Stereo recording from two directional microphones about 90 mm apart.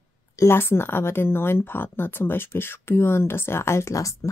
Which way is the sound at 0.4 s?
25° left (ahead or behind).